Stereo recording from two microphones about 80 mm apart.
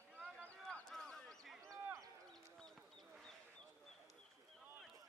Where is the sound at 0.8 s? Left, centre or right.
Centre.